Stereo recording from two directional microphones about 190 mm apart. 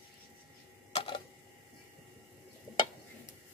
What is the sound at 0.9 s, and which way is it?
Tick-tock, 25° left (ahead or behind).